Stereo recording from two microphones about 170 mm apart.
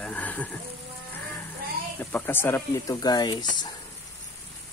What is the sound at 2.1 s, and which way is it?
Speech, 15° left (ahead or behind).